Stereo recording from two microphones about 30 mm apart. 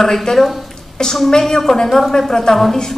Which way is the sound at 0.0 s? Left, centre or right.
Centre.